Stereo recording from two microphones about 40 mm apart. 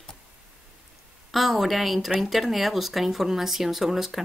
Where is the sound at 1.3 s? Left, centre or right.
Centre.